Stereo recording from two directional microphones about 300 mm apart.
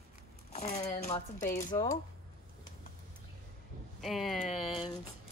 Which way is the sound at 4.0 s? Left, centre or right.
Centre.